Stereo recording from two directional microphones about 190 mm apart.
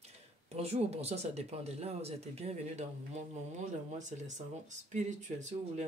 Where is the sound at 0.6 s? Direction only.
35° right (ahead or behind).